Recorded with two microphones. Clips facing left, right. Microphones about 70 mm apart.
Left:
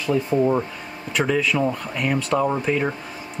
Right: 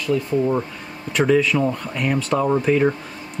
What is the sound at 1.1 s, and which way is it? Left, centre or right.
Speech, centre.